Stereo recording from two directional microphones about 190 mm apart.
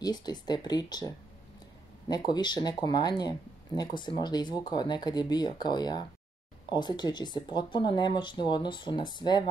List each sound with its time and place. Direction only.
0.0 s speech: 20° left (ahead or behind)